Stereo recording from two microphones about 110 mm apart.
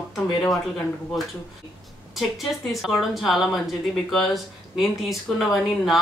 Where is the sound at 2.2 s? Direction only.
Centre (ahead or behind).